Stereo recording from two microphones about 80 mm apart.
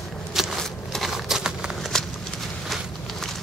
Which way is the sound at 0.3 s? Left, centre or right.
Centre.